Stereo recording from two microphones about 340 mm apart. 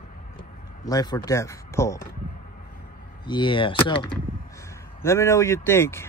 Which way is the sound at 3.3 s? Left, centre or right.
Centre.